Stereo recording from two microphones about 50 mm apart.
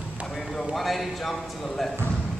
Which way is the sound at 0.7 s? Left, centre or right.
Centre.